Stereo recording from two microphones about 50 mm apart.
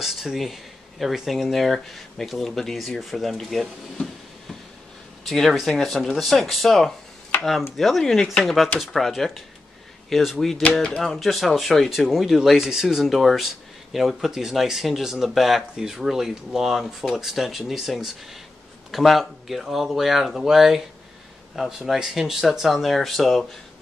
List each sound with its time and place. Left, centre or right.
0.0 s speech: centre
5.2 s speech: centre
12.4 s speech: centre